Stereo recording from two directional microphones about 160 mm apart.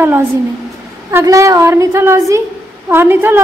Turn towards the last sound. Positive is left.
turn(degrees=-15)  # may be behind; listen again after turning